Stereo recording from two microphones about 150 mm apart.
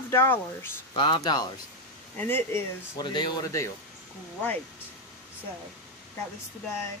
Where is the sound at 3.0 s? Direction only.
30° left (ahead or behind).